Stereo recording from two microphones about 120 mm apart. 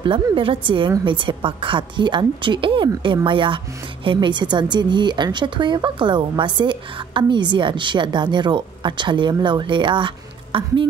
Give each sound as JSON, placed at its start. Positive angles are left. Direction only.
{"t": 0.0, "sound": "a woman's voice", "side_deg": -45}